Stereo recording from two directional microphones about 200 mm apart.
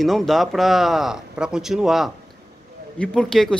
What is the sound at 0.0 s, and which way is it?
Speech, centre (ahead or behind).